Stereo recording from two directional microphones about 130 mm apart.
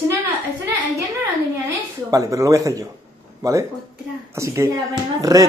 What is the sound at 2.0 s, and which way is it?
Speech, 25° right (ahead or behind).